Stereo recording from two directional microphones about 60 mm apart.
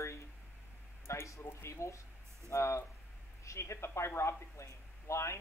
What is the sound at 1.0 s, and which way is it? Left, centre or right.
Speech, left.